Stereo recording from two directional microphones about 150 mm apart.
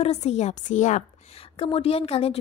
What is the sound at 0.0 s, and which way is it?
A woman's voice, 45° left (ahead or behind).